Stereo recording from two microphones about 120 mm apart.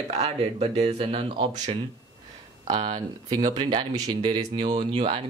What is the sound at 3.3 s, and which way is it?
Speech, 35° right (ahead or behind).